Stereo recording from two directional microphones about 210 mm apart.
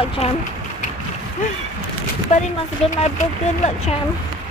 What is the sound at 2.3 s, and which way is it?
Speech, 35° left (ahead or behind).